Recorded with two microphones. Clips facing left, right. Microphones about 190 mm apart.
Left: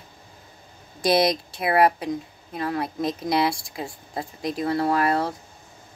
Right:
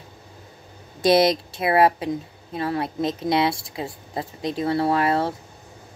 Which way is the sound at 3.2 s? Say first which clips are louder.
Right 2 dB; 25° right (ahead or behind).